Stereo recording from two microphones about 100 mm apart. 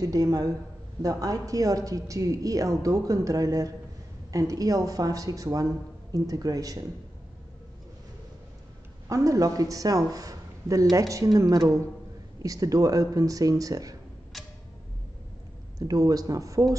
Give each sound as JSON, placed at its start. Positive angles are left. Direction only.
{"t": 0.0, "sound": "a woman's voice", "side_deg": -35}
{"t": 9.1, "sound": "a woman's voice", "side_deg": -35}
{"t": 14.3, "sound": "tick-tock", "side_deg": 0}
{"t": 15.8, "sound": "a woman's voice", "side_deg": -40}